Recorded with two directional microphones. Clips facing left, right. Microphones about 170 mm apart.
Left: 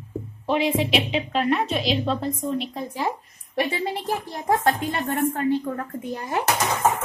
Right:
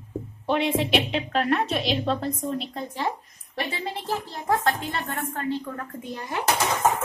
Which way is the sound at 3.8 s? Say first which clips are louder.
Left 3 dB; 15° left (ahead or behind).